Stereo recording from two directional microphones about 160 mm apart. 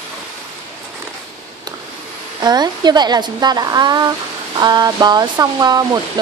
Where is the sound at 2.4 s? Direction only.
25° right (ahead or behind).